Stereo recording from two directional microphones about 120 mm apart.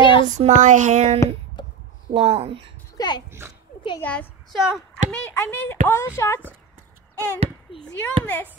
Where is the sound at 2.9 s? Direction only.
40° left (ahead or behind).